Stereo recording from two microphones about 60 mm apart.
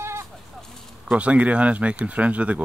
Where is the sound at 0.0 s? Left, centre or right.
Right.